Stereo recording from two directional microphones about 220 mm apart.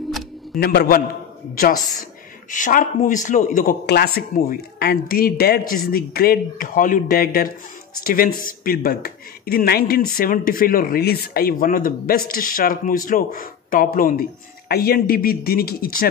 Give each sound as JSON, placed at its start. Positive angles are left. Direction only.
{"t": 0.6, "sound": "speech", "side_deg": 45}
{"t": 2.5, "sound": "speech", "side_deg": 35}